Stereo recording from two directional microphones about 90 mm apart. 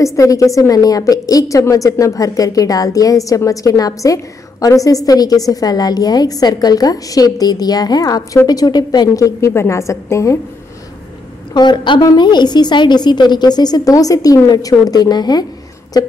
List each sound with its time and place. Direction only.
0.0 s a woman's voice: 35° left (ahead or behind)
9.5 s a woman's voice: 30° left (ahead or behind)
11.5 s a woman's voice: 55° left (ahead or behind)